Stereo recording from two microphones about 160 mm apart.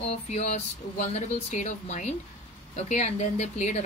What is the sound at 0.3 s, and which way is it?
A woman's voice, 45° left (ahead or behind).